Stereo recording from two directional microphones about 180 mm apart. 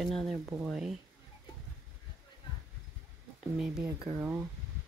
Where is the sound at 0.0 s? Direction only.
Centre (ahead or behind).